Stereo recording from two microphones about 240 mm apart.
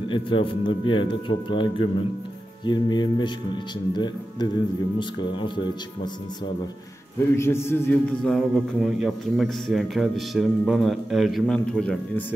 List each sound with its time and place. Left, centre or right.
0.1 s speech: left
7.3 s a man's voice: centre